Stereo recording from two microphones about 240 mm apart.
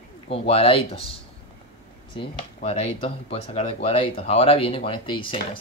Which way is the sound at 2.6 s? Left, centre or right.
Left.